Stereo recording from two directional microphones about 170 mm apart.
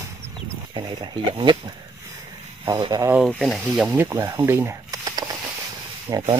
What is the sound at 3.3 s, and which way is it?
Speech, centre (ahead or behind).